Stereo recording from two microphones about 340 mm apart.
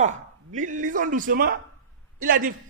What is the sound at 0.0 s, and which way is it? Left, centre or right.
A man's voice, right.